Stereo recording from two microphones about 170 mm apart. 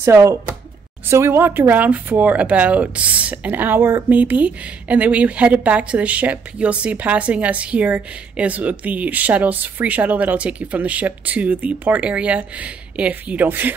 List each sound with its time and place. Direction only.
0.0 s speech: 15° right (ahead or behind)